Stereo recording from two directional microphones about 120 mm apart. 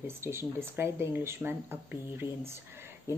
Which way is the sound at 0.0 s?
20° right (ahead or behind).